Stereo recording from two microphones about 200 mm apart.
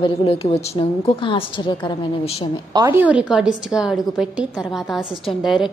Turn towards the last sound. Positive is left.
turn(degrees=0)  # may be behind; listen again after turning